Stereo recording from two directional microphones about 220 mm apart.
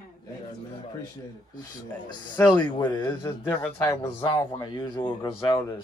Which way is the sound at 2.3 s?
20° left (ahead or behind).